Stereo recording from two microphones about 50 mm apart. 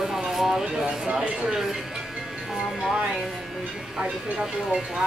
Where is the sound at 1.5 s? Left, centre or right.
Centre.